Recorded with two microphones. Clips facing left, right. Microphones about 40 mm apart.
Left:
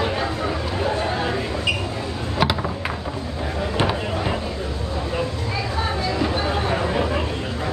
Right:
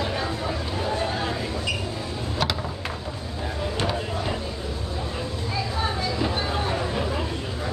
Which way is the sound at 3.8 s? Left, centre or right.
Left.